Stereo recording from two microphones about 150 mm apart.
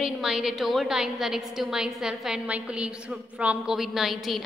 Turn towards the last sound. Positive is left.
turn(degrees=0)  # may be behind; listen again after turning